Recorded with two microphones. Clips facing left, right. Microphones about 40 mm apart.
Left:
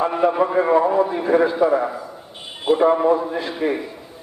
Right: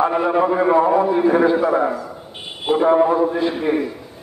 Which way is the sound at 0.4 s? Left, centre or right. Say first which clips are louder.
Right 3 dB; centre.